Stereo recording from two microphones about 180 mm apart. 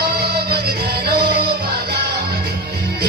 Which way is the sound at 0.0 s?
60° right (ahead or behind).